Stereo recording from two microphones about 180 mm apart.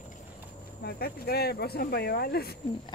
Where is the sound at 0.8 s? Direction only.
60° left (ahead or behind).